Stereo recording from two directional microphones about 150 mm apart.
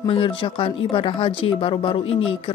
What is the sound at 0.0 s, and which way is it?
Speech, 35° left (ahead or behind).